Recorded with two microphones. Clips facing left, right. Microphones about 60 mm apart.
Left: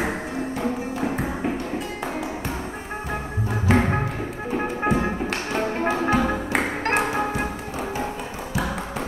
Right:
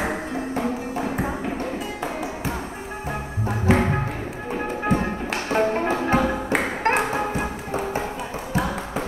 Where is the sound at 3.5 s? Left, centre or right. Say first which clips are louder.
Right 1 dB; centre.